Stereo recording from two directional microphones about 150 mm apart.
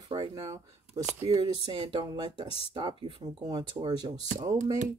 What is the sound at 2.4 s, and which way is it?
Speech, 40° left (ahead or behind).